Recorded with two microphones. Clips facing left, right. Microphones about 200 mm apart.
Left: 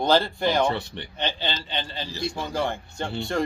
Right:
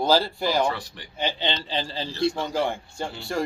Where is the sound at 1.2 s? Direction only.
10° right (ahead or behind).